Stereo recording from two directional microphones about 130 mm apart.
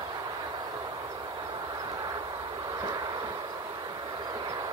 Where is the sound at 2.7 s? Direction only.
30° right (ahead or behind).